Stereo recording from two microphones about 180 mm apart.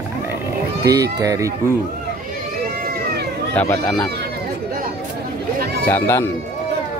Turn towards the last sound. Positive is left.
turn(degrees=15)  # may be behind; listen again after turning